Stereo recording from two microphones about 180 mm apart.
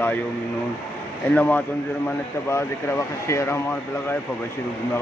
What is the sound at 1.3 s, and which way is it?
Speech, 10° left (ahead or behind).